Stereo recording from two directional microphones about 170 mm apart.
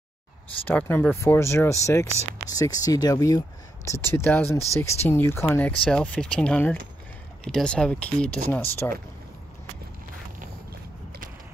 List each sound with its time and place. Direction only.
0.7 s speech: 10° left (ahead or behind)